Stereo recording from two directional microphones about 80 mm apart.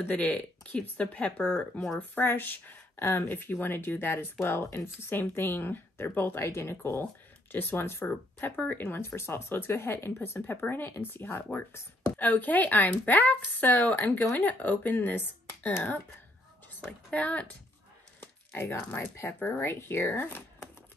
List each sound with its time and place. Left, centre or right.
0.0 s speech: centre
2.0 s speech: left
16.8 s speech: centre